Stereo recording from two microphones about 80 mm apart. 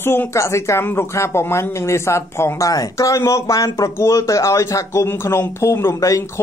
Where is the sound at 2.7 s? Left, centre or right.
Left.